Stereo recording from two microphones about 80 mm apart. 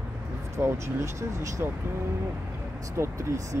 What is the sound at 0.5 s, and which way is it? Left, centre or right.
Speech, right.